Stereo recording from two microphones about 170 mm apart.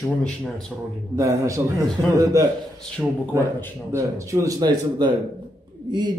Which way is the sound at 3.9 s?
20° right (ahead or behind).